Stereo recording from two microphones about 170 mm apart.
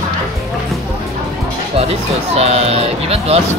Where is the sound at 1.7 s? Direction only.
35° right (ahead or behind).